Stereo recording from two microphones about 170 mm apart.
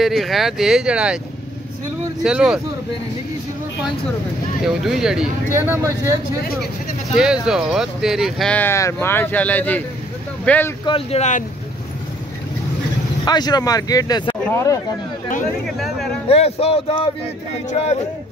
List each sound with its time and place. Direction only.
0.0 s speech: centre (ahead or behind)
2.2 s speech: 5° right (ahead or behind)
4.6 s speech: centre (ahead or behind)
5.5 s speech: 15° right (ahead or behind)
7.2 s speech: 5° right (ahead or behind)
10.9 s speech: 35° left (ahead or behind)
13.2 s speech: 25° left (ahead or behind)
15.6 s speech: centre (ahead or behind)
16.3 s speech: 35° left (ahead or behind)